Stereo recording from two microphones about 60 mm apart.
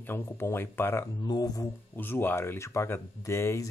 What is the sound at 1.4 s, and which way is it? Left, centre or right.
Speech, left.